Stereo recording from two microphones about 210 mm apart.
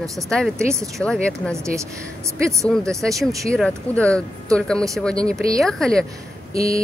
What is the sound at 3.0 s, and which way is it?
Speech, 15° right (ahead or behind).